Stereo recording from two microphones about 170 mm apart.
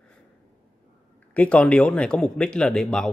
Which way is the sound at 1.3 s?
10° left (ahead or behind).